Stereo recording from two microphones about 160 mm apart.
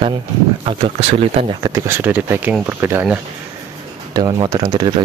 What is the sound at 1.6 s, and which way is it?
Speech, 15° right (ahead or behind).